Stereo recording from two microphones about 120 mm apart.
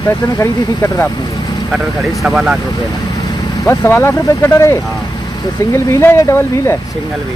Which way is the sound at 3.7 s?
20° left (ahead or behind).